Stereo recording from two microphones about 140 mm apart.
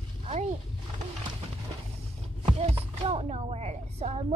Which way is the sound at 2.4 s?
45° right (ahead or behind).